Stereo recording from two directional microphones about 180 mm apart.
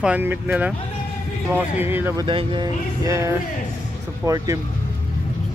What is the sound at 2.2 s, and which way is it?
Speech, 25° right (ahead or behind).